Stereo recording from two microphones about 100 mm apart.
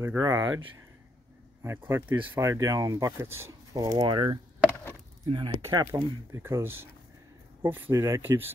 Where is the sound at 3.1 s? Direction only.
25° right (ahead or behind).